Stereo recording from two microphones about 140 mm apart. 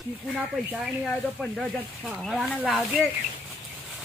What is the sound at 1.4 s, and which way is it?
Speech, centre (ahead or behind).